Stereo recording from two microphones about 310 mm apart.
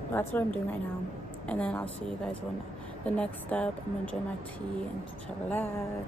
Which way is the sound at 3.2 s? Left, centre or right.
Centre.